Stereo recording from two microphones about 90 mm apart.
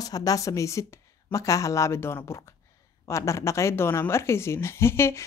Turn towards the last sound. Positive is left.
turn(degrees=30)  # may be behind; listen again after turning